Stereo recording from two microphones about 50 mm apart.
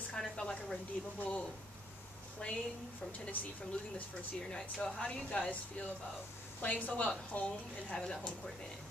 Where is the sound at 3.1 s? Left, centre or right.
Left.